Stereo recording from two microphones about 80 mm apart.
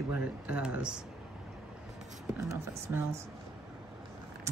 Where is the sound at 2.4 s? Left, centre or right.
Right.